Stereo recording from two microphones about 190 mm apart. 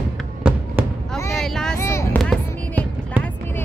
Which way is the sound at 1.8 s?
15° left (ahead or behind).